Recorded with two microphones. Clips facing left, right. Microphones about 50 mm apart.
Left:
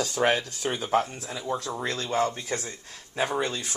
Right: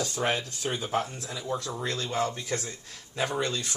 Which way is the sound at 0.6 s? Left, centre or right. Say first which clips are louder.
Left 4 dB; left.